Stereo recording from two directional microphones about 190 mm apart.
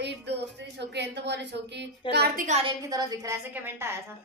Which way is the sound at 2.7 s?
20° right (ahead or behind).